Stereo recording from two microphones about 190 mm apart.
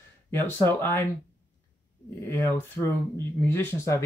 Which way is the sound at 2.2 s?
15° left (ahead or behind).